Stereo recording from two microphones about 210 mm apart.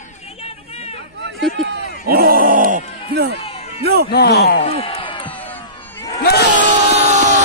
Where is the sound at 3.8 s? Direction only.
50° right (ahead or behind).